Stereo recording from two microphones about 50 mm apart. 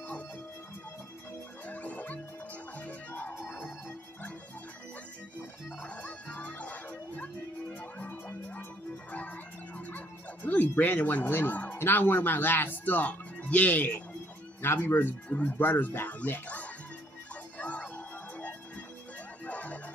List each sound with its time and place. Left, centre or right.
1.7 s music: left
5.8 s music: left
9.8 s music: left
10.8 s speech: left
11.2 s speech: left
14.6 s speech: left
15.2 s speech: left
15.6 s speech: left
16.4 s music: left